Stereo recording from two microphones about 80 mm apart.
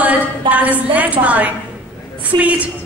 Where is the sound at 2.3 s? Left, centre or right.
Right.